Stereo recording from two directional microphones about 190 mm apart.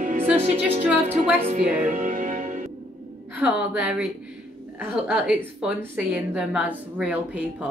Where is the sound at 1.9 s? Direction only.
40° right (ahead or behind).